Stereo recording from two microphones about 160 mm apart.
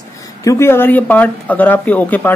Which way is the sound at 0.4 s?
20° left (ahead or behind).